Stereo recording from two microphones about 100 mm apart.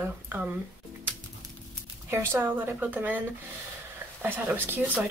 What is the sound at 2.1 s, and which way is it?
Speech, 20° right (ahead or behind).